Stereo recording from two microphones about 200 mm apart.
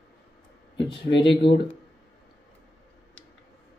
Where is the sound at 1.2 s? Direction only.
25° left (ahead or behind).